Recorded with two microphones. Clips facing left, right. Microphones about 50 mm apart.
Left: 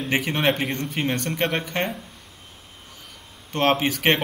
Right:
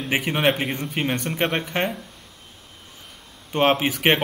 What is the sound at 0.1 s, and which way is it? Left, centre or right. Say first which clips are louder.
A man's voice: right 1 dB; centre.